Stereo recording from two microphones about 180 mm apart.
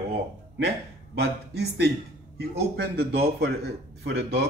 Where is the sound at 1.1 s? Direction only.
65° right (ahead or behind).